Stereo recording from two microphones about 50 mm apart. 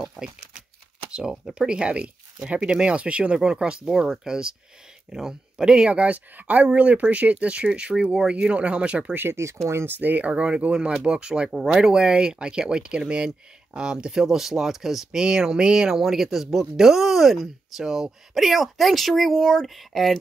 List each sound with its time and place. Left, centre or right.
0.1 s crumpling: centre
1.1 s speech: centre
9.1 s speech: right
9.8 s speech: right; by 16.0 s centre
16.0 s speech: centre